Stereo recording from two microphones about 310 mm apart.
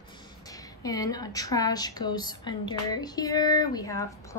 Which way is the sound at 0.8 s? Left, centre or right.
Centre.